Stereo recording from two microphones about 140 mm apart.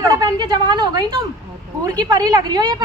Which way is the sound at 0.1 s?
30° right (ahead or behind).